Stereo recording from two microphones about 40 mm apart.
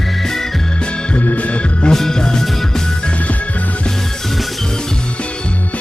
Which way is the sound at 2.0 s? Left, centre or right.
Centre.